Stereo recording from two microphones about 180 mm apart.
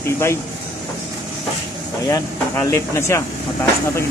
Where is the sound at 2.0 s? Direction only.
15° left (ahead or behind).